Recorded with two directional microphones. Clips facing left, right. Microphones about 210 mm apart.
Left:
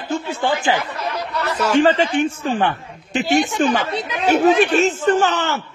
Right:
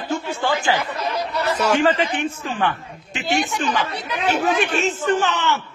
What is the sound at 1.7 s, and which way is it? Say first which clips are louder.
A man's voice: left 4 dB; 30° left (ahead or behind).